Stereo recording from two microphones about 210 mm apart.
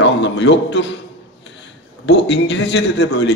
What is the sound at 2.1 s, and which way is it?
A man's voice, 55° left (ahead or behind).